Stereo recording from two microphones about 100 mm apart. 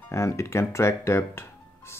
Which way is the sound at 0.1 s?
30° left (ahead or behind).